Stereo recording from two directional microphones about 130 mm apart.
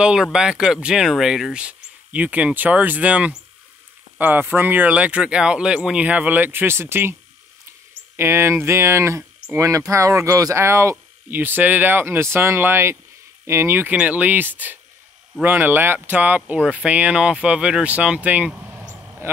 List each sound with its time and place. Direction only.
0.0 s speech: 5° right (ahead or behind)
8.2 s speech: 20° right (ahead or behind)